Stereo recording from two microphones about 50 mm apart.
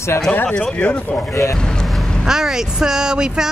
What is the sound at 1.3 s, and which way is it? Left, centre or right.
Speech, left.